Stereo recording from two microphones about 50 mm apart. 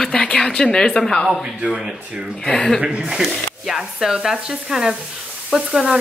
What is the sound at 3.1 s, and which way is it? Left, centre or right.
Speech, centre.